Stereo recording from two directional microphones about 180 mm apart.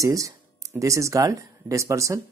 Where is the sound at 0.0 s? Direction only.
20° right (ahead or behind).